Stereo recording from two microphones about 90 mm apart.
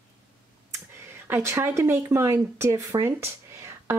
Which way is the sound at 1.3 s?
30° right (ahead or behind).